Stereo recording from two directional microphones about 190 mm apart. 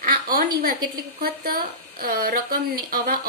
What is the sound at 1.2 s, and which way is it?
A woman's voice, 55° right (ahead or behind).